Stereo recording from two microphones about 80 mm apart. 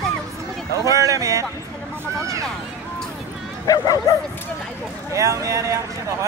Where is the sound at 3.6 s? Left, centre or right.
Left.